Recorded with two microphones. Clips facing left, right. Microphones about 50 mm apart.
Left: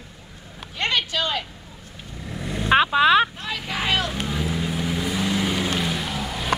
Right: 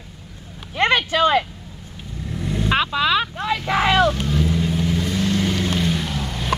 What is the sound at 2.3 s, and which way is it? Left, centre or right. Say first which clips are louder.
Vehicle: right 4 dB; centre.